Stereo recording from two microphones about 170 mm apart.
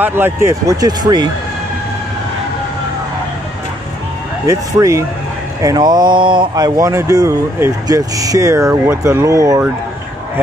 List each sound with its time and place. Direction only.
0.0 s speech: 10° right (ahead or behind)
4.5 s a man's voice: 15° right (ahead or behind)